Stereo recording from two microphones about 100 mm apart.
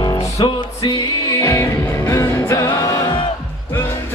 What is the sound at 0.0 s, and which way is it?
Music, 45° left (ahead or behind).